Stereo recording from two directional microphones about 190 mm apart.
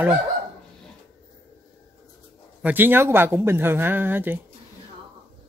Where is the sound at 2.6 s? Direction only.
10° right (ahead or behind).